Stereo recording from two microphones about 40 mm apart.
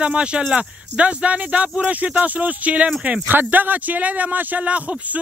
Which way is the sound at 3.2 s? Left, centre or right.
Right.